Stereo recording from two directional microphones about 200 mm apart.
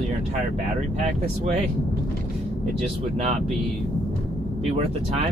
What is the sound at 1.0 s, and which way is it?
Speech, 35° right (ahead or behind).